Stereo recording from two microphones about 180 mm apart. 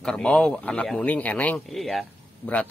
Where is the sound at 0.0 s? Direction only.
5° left (ahead or behind).